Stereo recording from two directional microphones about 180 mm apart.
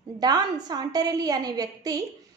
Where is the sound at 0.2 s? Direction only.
20° right (ahead or behind).